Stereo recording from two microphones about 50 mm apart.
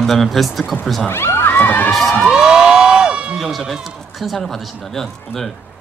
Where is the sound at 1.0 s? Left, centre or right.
Left.